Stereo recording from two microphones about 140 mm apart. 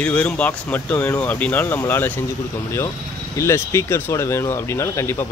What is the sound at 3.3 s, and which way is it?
Speech, 20° left (ahead or behind).